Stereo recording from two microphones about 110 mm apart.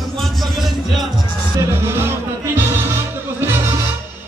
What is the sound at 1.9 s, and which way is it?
Music, 20° right (ahead or behind).